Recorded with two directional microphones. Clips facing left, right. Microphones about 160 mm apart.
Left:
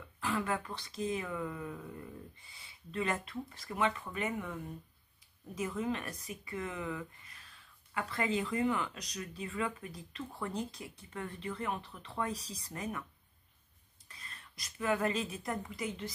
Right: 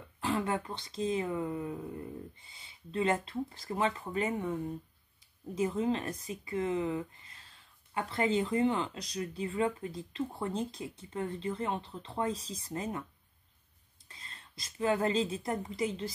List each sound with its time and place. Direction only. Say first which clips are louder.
0.2 s speech: right 3 dB; 25° right (ahead or behind)
14.0 s a woman's voice: even; 25° right (ahead or behind)